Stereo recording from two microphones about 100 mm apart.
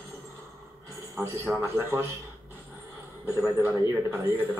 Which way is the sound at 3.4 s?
30° right (ahead or behind).